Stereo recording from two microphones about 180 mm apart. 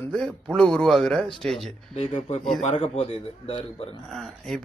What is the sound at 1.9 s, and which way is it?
A man's voice, 35° left (ahead or behind).